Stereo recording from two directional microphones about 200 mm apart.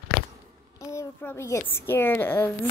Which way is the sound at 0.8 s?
15° left (ahead or behind).